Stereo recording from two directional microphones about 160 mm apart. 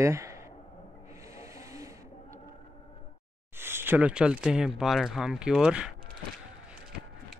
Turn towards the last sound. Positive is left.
turn(degrees=-5)  # may be behind; listen again after turning